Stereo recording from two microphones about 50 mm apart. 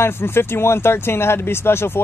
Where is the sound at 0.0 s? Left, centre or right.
Left.